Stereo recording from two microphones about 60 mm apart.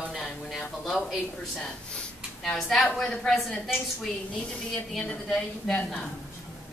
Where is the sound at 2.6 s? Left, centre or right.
Centre.